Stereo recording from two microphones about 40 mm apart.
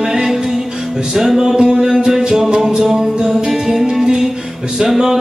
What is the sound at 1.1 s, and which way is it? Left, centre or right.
Music, centre.